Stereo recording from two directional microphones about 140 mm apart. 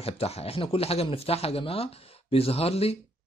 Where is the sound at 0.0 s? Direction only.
45° left (ahead or behind).